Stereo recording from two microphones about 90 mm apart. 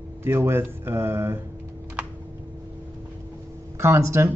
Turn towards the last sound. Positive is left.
turn(degrees=-30)  # may be behind; listen again after turning